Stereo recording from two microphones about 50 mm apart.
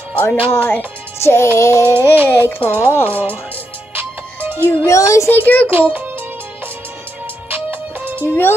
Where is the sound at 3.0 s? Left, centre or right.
Right.